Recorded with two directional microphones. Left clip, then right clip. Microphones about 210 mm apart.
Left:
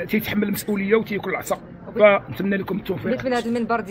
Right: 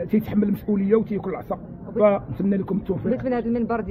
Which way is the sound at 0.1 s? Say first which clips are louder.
Left 1 dB; 15° left (ahead or behind).